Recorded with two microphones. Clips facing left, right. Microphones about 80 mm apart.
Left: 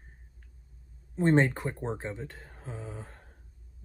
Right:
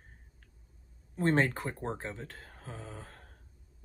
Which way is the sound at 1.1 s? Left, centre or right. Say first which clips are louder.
Left 4 dB; centre.